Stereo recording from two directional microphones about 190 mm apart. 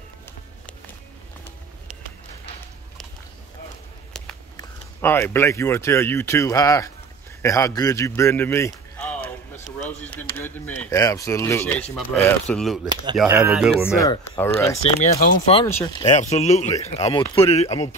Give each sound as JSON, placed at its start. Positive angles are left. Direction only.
{"t": 4.6, "sound": "a man's voice", "side_deg": 10}
{"t": 12.8, "sound": "speech", "side_deg": -25}
{"t": 14.4, "sound": "speech", "side_deg": 15}
{"t": 15.0, "sound": "speech", "side_deg": 35}
{"t": 16.1, "sound": "speech", "side_deg": 40}